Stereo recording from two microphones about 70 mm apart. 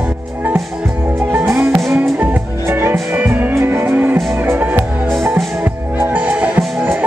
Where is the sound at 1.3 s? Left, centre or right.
Right.